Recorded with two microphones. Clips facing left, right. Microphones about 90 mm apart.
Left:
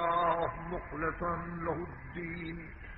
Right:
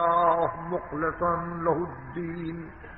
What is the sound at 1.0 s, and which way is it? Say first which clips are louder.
Mantra: right 6 dB; 60° right (ahead or behind).